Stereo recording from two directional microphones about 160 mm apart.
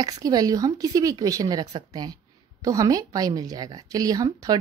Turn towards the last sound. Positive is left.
turn(degrees=-25)  # may be behind; listen again after turning